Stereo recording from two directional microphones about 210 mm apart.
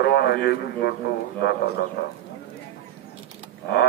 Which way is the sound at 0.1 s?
50° left (ahead or behind).